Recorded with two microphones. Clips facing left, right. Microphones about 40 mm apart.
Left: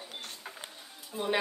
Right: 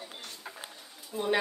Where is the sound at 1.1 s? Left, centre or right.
Centre.